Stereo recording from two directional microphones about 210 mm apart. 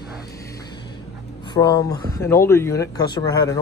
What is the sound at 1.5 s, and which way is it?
Speech, 20° left (ahead or behind).